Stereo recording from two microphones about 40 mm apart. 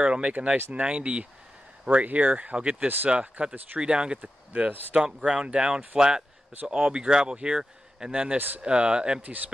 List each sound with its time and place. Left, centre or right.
0.0 s speech: right
0.3 s speech: right
1.9 s speech: right
2.5 s speech: right
9.2 s speech: right